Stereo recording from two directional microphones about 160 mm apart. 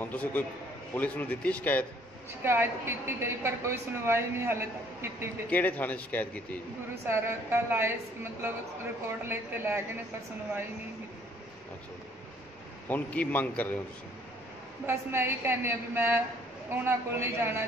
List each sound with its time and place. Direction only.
0.0 s a man's voice: 10° left (ahead or behind)
2.4 s a woman's voice: 15° right (ahead or behind)
5.5 s a man's voice: 10° left (ahead or behind)
7.1 s a woman's voice: 15° right (ahead or behind)
12.8 s a man's voice: 10° left (ahead or behind)
14.9 s a woman's voice: 15° right (ahead or behind)